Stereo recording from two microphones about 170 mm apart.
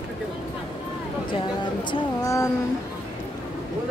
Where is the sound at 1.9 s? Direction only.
20° left (ahead or behind).